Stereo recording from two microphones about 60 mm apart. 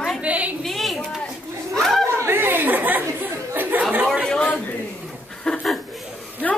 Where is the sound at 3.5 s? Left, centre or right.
Right.